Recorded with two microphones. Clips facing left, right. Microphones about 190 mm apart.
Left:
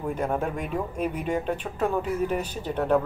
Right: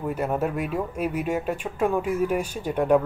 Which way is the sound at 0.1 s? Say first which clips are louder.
Right 2 dB; 5° right (ahead or behind).